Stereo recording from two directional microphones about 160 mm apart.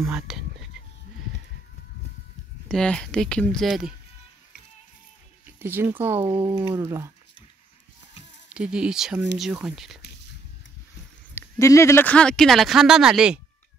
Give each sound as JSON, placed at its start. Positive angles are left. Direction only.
{"t": 0.3, "sound": "speech", "side_deg": -5}
{"t": 2.7, "sound": "speech", "side_deg": 5}
{"t": 5.6, "sound": "speech", "side_deg": -15}
{"t": 6.2, "sound": "speech", "side_deg": -30}
{"t": 6.8, "sound": "speech", "side_deg": -15}
{"t": 8.5, "sound": "speech", "side_deg": -5}
{"t": 11.3, "sound": "speech", "side_deg": 20}